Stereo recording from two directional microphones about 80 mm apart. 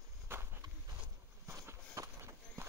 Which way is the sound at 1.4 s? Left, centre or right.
Right.